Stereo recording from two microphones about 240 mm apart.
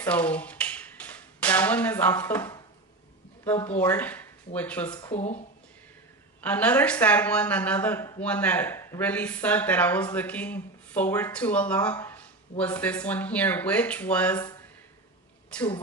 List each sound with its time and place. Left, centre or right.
0.0 s a sound: centre
3.4 s speech: centre
5.0 s speech: left
6.4 s speech: centre